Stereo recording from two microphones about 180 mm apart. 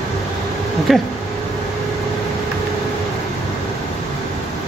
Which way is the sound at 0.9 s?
Centre (ahead or behind).